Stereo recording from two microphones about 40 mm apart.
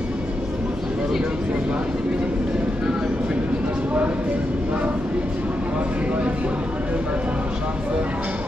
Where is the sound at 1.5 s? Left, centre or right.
Right.